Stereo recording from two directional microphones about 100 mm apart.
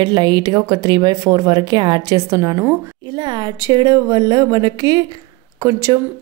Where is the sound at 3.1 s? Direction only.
50° right (ahead or behind).